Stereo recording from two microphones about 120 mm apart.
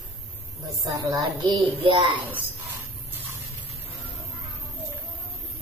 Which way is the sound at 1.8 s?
45° right (ahead or behind).